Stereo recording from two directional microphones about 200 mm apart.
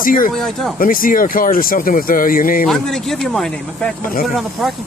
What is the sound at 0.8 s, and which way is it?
Speech, 45° left (ahead or behind).